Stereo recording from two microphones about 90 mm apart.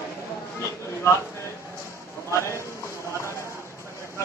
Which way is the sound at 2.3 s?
30° left (ahead or behind).